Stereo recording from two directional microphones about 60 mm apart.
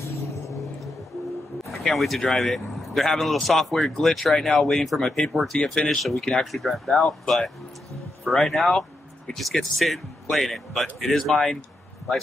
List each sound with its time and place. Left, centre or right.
1.7 s speech: centre